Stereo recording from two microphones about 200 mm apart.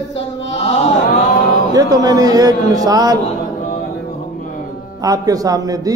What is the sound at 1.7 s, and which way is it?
A man's voice, 20° right (ahead or behind).